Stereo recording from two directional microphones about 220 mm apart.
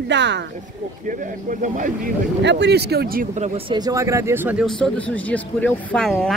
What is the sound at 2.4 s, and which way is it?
Speech, 50° right (ahead or behind).